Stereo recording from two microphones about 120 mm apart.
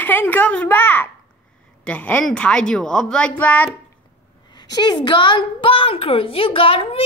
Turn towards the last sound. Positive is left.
turn(degrees=50)  # may be behind; listen again after turning